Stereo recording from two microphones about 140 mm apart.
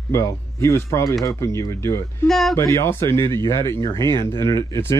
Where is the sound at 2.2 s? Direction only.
Centre (ahead or behind).